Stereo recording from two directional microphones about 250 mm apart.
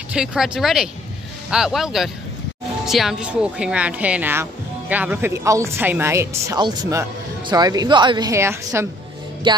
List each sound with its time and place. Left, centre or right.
0.1 s speech: centre
9.5 s music: centre